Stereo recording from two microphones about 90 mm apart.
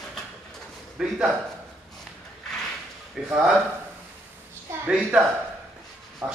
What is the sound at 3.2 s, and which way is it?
Speech, 5° right (ahead or behind).